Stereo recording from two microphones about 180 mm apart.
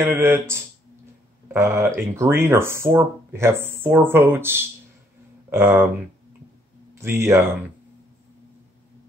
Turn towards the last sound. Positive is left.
turn(degrees=-15)  # may be behind; listen again after turning